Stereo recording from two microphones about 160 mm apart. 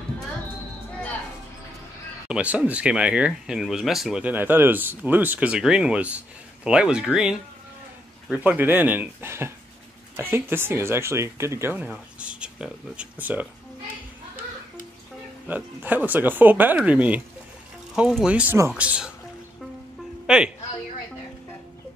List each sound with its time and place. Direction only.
2.2 s speech: 5° right (ahead or behind)
15.4 s speech: 10° right (ahead or behind)
20.2 s speech: 5° right (ahead or behind)